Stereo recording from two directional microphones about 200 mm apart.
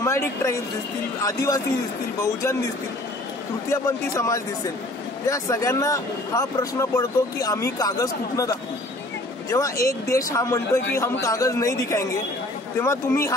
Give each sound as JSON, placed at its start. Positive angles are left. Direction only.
{"t": 0.0, "sound": "a man's voice", "side_deg": 15}
{"t": 3.8, "sound": "a man's voice", "side_deg": 15}